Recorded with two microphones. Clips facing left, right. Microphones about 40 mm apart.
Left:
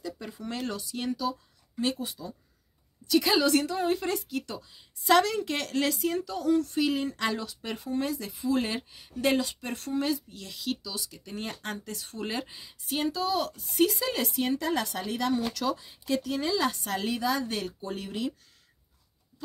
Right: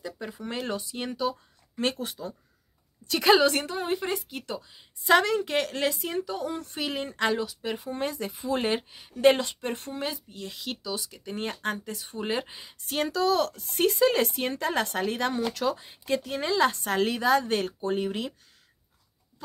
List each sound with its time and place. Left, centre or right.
0.4 s speech: right
1.8 s speech: right
7.6 s speech: centre
7.9 s speech: right
12.8 s speech: right
13.8 s speech: right